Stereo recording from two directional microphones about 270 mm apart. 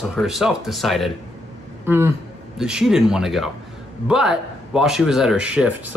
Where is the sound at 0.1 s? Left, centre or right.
Centre.